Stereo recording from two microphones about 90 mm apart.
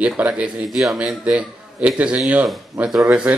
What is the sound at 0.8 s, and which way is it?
A man's voice, 5° right (ahead or behind).